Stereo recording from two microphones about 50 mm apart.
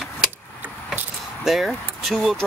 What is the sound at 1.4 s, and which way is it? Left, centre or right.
Speech, centre.